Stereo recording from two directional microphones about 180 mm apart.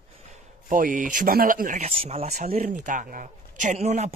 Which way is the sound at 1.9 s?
35° right (ahead or behind).